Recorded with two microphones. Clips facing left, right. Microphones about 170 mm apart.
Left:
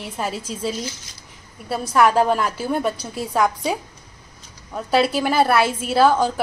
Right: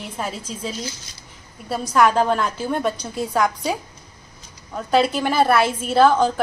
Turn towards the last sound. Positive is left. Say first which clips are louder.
# right 1 dB
turn(degrees=5)  # may be behind; listen again after turning